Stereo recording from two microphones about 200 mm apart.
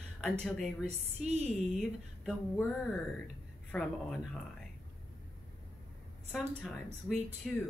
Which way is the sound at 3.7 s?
Centre (ahead or behind).